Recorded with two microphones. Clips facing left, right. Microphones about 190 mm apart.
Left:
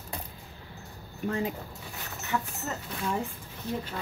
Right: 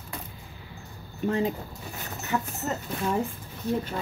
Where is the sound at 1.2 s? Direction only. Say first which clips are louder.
Right 4 dB; 25° right (ahead or behind).